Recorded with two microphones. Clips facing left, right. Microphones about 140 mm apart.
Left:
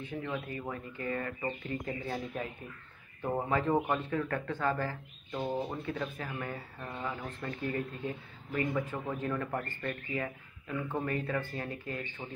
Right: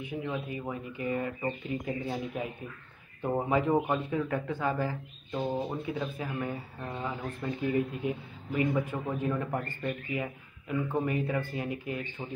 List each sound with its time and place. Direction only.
0.0 s a man's voice: 15° right (ahead or behind)